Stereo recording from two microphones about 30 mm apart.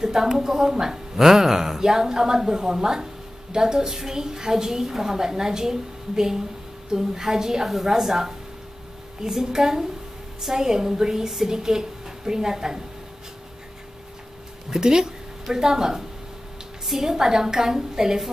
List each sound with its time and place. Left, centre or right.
0.0 s a woman's voice: centre
14.7 s a woman's voice: right